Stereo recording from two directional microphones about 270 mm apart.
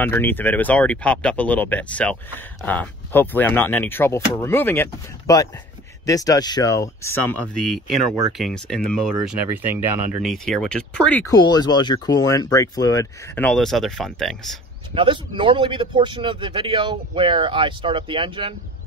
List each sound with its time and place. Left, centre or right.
0.0 s speech: centre
15.0 s a man's voice: centre